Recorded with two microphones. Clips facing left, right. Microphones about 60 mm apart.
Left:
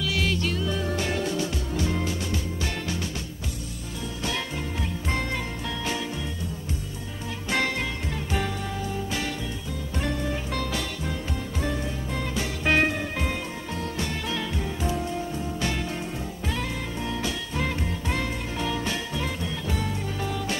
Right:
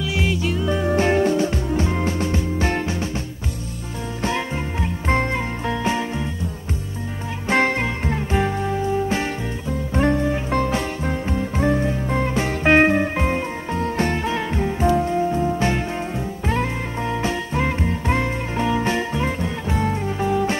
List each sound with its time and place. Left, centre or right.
0.0 s music: right
0.7 s music: right
5.0 s music: right
7.4 s music: right